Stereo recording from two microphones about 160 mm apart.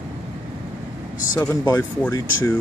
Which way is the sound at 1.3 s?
15° left (ahead or behind).